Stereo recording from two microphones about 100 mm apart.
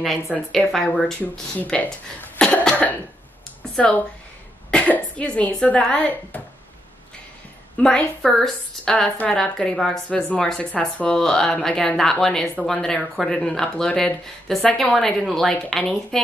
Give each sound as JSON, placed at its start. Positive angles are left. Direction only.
{"t": 0.5, "sound": "a woman's voice", "side_deg": 0}
{"t": 2.3, "sound": "cough", "side_deg": 10}
{"t": 4.6, "sound": "a woman's voice", "side_deg": 15}
{"t": 7.7, "sound": "a woman's voice", "side_deg": 10}